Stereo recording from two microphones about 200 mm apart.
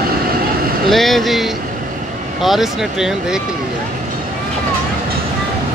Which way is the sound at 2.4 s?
Centre (ahead or behind).